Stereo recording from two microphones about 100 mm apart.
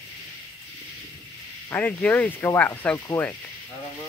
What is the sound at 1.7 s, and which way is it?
Speech, 15° left (ahead or behind).